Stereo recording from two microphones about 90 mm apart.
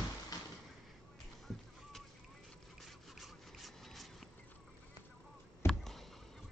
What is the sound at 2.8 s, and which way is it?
Rub, centre (ahead or behind).